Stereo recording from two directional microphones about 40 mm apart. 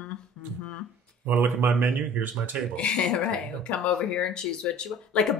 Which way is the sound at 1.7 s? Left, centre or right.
Right.